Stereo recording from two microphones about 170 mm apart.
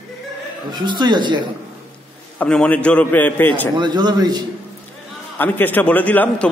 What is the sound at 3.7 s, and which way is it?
Speech, 25° right (ahead or behind).